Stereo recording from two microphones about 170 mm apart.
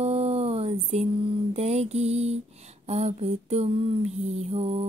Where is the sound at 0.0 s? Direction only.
35° right (ahead or behind).